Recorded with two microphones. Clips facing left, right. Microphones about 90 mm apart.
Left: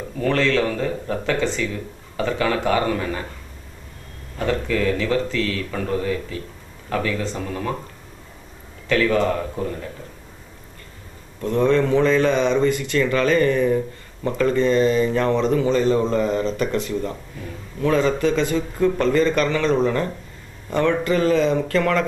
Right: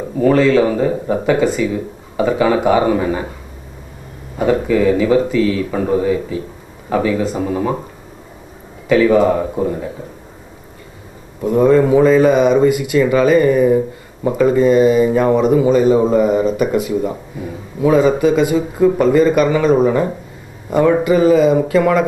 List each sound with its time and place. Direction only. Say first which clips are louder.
0.0 s speech: right 8 dB; 15° right (ahead or behind)
4.4 s speech: right 8 dB; 15° right (ahead or behind)
8.8 s speech: right 8 dB; 10° right (ahead or behind)
11.4 s speech: right 7 dB; 10° right (ahead or behind)